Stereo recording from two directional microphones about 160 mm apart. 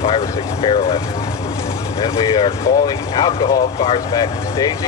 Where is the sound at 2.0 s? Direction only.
25° left (ahead or behind).